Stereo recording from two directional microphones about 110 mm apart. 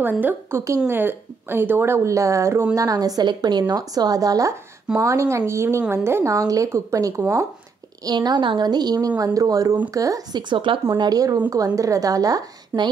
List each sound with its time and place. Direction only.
0.0 s a woman's voice: 15° right (ahead or behind)
8.0 s a woman's voice: 40° right (ahead or behind)
11.0 s a woman's voice: 35° right (ahead or behind)